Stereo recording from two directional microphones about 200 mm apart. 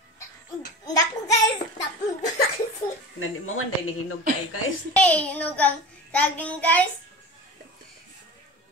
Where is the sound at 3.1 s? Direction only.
90° left.